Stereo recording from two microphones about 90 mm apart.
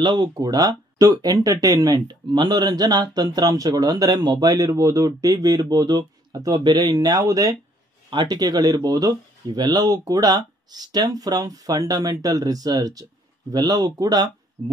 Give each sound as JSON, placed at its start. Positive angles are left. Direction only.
{"t": 0.0, "sound": "speech", "side_deg": -55}
{"t": 8.1, "sound": "speech", "side_deg": -55}